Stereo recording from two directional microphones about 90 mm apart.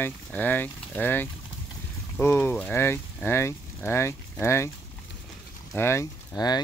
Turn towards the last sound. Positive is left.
turn(degrees=50)  # may be behind; listen again after turning